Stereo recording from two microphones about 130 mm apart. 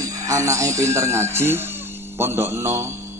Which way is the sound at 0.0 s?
25° right (ahead or behind).